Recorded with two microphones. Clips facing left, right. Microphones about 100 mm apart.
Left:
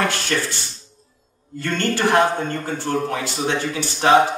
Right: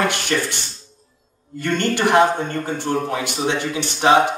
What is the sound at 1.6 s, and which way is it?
Speech, 20° right (ahead or behind).